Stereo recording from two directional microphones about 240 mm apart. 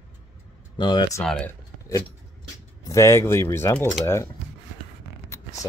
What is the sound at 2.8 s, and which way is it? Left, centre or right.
Speech, centre.